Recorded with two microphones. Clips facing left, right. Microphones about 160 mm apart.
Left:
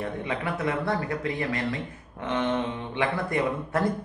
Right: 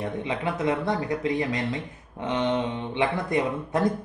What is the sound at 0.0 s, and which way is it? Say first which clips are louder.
Speech: right 2 dB; 20° right (ahead or behind).